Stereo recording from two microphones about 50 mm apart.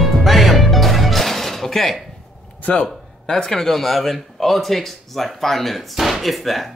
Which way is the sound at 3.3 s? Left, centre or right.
Centre.